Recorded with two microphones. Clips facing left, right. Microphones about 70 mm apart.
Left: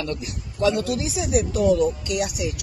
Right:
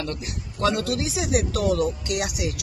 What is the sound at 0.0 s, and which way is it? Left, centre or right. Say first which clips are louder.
Speech: left 2 dB; right.